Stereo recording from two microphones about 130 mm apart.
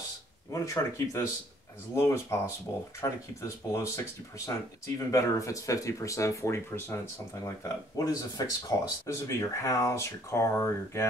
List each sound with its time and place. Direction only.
0.5 s speech: 25° left (ahead or behind)